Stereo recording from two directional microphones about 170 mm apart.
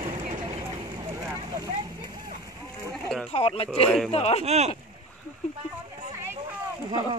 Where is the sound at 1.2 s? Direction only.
15° right (ahead or behind).